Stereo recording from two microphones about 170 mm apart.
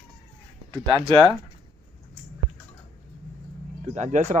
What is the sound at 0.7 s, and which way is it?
Speech, 30° right (ahead or behind).